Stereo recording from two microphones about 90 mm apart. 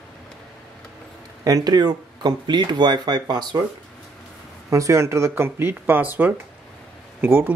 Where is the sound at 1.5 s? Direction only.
45° right (ahead or behind).